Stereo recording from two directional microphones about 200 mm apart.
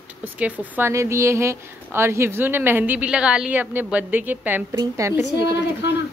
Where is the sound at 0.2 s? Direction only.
5° right (ahead or behind).